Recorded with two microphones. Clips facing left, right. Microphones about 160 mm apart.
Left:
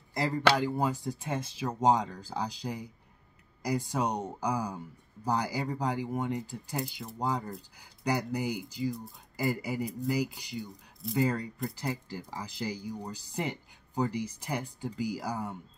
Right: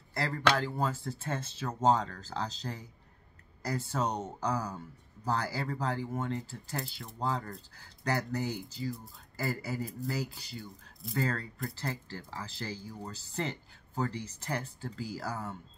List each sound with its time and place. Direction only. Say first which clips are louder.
0.1 s speech: left 3 dB; 15° left (ahead or behind)